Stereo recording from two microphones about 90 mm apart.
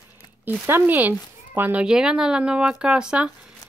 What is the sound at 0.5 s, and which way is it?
Speech, 20° right (ahead or behind).